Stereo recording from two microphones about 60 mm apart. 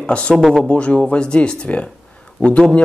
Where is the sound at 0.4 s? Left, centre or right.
Centre.